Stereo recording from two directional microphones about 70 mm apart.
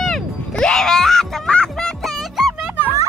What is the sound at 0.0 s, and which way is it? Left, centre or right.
Music, centre.